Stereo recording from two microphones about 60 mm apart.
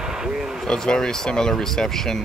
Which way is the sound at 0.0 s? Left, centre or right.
Centre.